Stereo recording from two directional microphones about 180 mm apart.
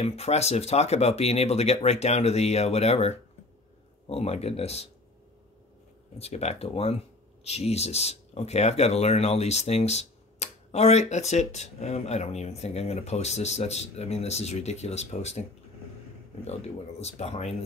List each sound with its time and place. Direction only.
0.0 s speech: 35° left (ahead or behind)
6.1 s speech: 35° left (ahead or behind)
17.0 s speech: 35° left (ahead or behind)